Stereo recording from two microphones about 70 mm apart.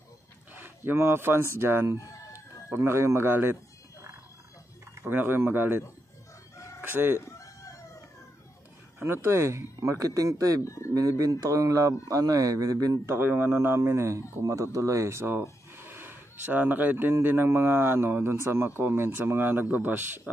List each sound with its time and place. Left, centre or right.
0.6 s speech: right
2.0 s chicken: left
2.7 s speech: right
5.0 s speech: right
6.8 s chicken: right
7.2 s chicken: left
9.0 s speech: right
10.6 s speech: left
11.0 s speech: right
13.0 s speech: right